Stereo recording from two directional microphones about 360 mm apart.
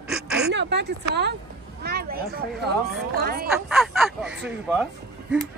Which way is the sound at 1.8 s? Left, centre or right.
Right.